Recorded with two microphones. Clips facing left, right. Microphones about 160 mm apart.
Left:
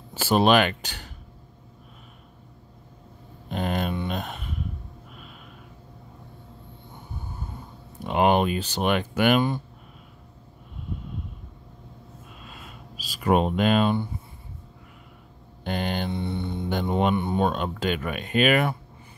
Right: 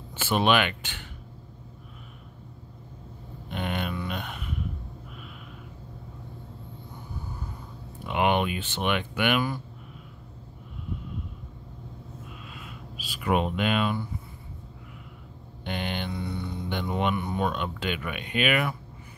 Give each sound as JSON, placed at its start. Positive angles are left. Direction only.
{"t": 0.1, "sound": "speech", "side_deg": 40}
{"t": 3.4, "sound": "vehicle", "side_deg": 35}
{"t": 3.9, "sound": "a sound", "side_deg": 30}
{"t": 8.0, "sound": "speech", "side_deg": 40}
{"t": 12.4, "sound": "a sound", "side_deg": 40}
{"t": 15.6, "sound": "speech", "side_deg": 40}
{"t": 16.1, "sound": "mantra", "side_deg": 30}
{"t": 16.8, "sound": "speech", "side_deg": 30}